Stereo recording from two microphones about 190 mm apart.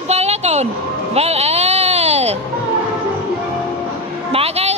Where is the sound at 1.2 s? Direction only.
35° right (ahead or behind).